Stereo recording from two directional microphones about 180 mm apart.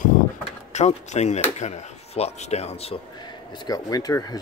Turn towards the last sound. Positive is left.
turn(degrees=20)  # may be behind; listen again after turning